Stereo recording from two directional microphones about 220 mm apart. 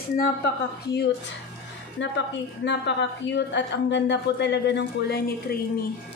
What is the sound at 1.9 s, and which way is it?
A woman's voice, 55° left (ahead or behind).